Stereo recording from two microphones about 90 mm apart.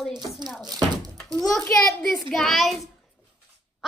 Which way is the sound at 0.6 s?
45° right (ahead or behind).